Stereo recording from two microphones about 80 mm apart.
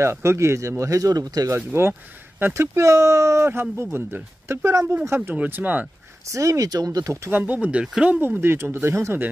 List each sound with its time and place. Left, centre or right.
0.0 s speech: right
1.5 s speech: right
5.3 s speech: centre
6.2 s speech: right
7.2 s speech: right
8.2 s speech: right